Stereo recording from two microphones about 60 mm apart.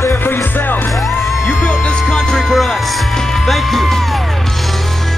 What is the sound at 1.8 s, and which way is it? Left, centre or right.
Music, centre.